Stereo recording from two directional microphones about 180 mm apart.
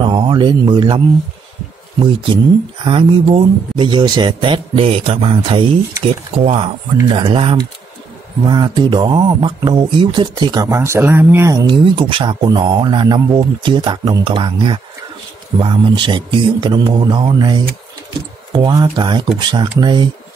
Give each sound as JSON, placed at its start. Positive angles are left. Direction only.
{"t": 0.0, "sound": "speech", "side_deg": -25}